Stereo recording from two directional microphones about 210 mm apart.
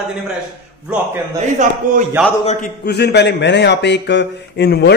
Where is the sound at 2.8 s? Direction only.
50° left (ahead or behind).